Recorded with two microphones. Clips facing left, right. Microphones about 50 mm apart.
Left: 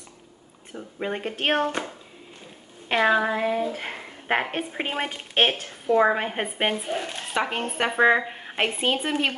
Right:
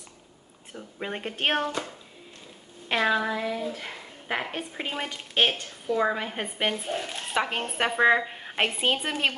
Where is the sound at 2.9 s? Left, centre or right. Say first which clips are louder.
Left 4 dB; centre.